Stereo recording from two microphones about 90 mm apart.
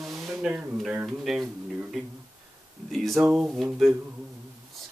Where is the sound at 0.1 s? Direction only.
30° right (ahead or behind).